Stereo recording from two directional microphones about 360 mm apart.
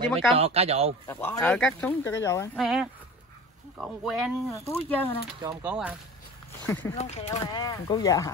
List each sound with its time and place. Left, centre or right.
0.4 s speech: centre
1.0 s speech: centre
5.4 s speech: centre
7.0 s speech: centre